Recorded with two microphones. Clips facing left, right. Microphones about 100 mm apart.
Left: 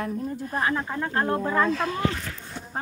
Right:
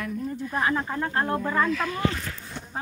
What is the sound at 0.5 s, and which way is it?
Speech, centre (ahead or behind).